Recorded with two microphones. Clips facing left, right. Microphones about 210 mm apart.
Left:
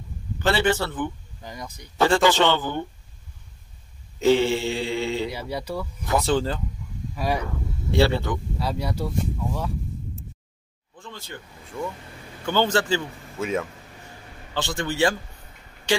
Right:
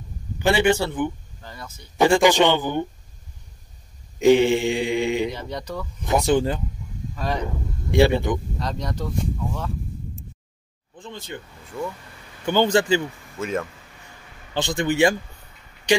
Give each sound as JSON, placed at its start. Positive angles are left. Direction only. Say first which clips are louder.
{"t": 0.4, "sound": "mantra", "louder": "right 3 dB", "side_deg": -15}
{"t": 1.4, "sound": "speech", "louder": "left 3 dB", "side_deg": 15}
{"t": 2.0, "sound": "mantra", "louder": "right 3 dB", "side_deg": -15}
{"t": 4.2, "sound": "mantra", "louder": "right 4 dB", "side_deg": -15}
{"t": 5.3, "sound": "speech", "louder": "left 1 dB", "side_deg": 10}
{"t": 6.0, "sound": "mantra", "louder": "right 3 dB", "side_deg": -15}
{"t": 7.2, "sound": "speech", "louder": "left 1 dB", "side_deg": 10}
{"t": 7.4, "sound": "speech", "louder": "right 1 dB", "side_deg": -15}
{"t": 8.5, "sound": "speech", "louder": "left 1 dB", "side_deg": 10}
{"t": 11.0, "sound": "speech", "louder": "right 4 dB", "side_deg": -20}
{"t": 12.4, "sound": "mantra", "louder": "right 3 dB", "side_deg": -15}
{"t": 13.4, "sound": "speech", "louder": "even", "side_deg": 0}
{"t": 14.5, "sound": "mantra", "louder": "right 5 dB", "side_deg": -15}
{"t": 15.9, "sound": "speech", "louder": "right 4 dB", "side_deg": -15}